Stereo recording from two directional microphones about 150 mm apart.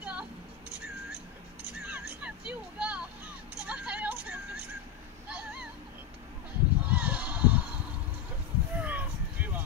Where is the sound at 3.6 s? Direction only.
10° right (ahead or behind).